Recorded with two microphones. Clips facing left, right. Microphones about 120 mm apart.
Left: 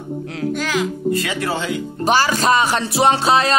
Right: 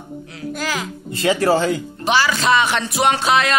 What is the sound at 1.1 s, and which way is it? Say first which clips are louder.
Speech: right 5 dB; 30° right (ahead or behind).